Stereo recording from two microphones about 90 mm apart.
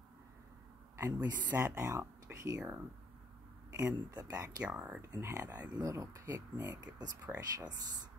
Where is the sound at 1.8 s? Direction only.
35° right (ahead or behind).